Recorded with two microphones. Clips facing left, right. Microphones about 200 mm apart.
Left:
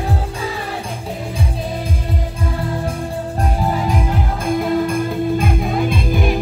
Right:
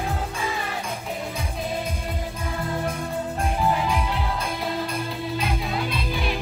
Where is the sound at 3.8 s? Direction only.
45° left (ahead or behind).